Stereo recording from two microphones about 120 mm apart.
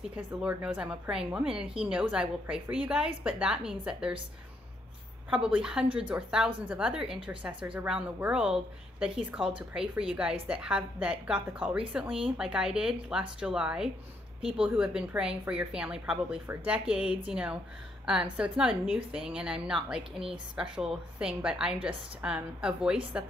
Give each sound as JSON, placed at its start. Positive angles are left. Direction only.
{"t": 0.1, "sound": "a woman's voice", "side_deg": -10}
{"t": 5.3, "sound": "a woman's voice", "side_deg": -5}